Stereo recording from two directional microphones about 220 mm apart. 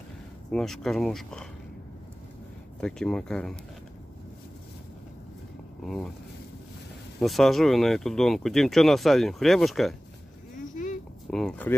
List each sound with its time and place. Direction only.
0.5 s speech: centre (ahead or behind)
2.8 s speech: 5° left (ahead or behind)
7.2 s speech: centre (ahead or behind)
11.2 s speech: centre (ahead or behind)